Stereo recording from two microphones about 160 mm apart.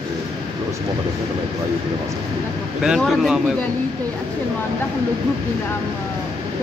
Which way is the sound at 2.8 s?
Centre (ahead or behind).